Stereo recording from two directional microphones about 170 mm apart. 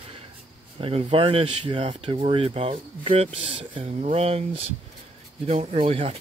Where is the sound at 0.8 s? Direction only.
35° right (ahead or behind).